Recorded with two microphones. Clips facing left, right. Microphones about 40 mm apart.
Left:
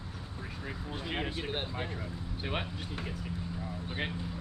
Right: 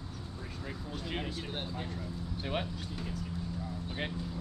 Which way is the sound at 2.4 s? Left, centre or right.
Centre.